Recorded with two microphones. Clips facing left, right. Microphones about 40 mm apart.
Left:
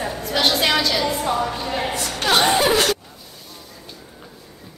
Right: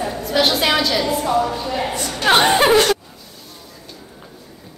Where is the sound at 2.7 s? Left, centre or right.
Centre.